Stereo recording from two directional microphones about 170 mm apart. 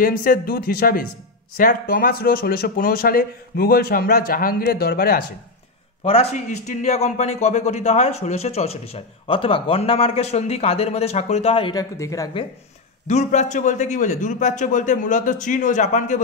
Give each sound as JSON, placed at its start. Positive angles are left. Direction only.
{"t": 0.0, "sound": "a man's voice", "side_deg": 55}
{"t": 6.0, "sound": "a man's voice", "side_deg": 35}
{"t": 13.0, "sound": "a man's voice", "side_deg": 45}